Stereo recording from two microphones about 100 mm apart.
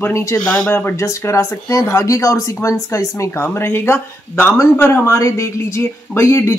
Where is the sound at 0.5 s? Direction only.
15° left (ahead or behind).